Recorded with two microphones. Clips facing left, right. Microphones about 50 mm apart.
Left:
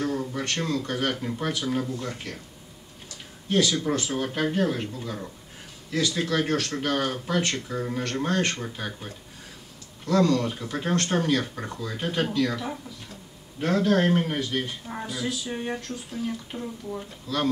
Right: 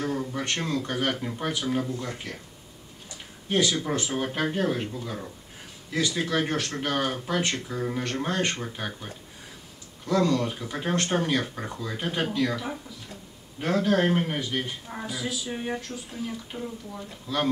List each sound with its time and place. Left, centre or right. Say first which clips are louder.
0.0 s a sound: left 1 dB; centre
0.5 s speech: left 2 dB; centre
3.4 s speech: left 1 dB; centre
14.9 s speech: left 2 dB; centre
17.3 s speech: even; centre